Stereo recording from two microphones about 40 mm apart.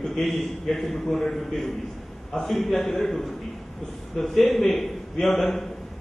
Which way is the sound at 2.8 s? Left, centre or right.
Left.